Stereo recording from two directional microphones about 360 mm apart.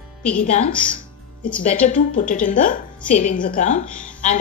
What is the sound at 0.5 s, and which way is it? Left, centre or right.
A woman's voice, centre.